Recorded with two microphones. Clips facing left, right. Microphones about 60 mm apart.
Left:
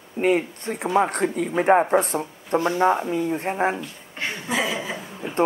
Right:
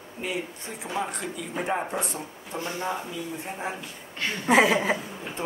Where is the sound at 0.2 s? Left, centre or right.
Left.